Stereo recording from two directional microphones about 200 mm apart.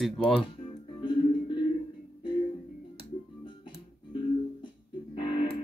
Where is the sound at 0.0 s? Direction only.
Centre (ahead or behind).